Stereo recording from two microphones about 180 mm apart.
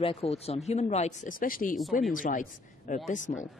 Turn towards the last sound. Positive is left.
turn(degrees=45)  # may be behind; listen again after turning